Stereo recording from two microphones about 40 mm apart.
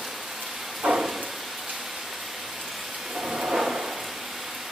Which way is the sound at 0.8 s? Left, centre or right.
Right.